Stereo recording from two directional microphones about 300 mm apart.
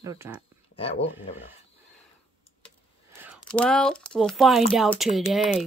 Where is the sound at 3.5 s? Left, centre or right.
Centre.